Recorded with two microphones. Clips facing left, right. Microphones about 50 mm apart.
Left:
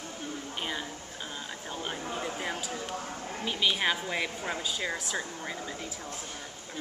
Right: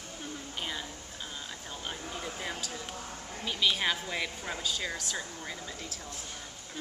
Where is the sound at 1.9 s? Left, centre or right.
Centre.